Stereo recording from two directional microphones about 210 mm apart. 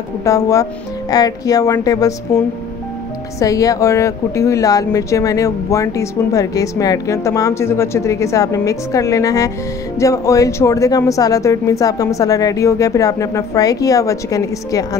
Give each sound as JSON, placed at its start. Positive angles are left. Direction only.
{"t": 0.2, "sound": "speech", "side_deg": 15}
{"t": 3.3, "sound": "speech", "side_deg": 15}